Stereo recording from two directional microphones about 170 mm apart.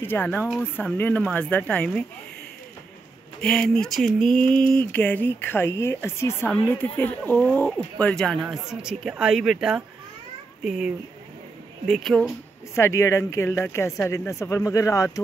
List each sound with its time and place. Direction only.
0.0 s speech: 10° left (ahead or behind)
3.3 s speech: 5° left (ahead or behind)
11.9 s speech: centre (ahead or behind)
12.7 s speech: 15° left (ahead or behind)